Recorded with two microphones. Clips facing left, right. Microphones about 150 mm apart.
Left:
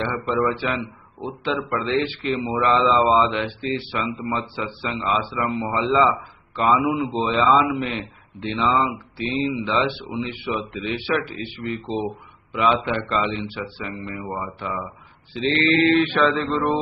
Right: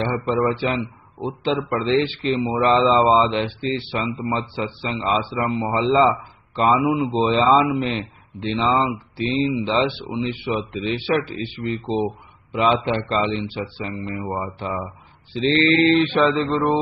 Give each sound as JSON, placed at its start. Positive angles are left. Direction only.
{"t": 0.1, "sound": "a man's voice", "side_deg": -30}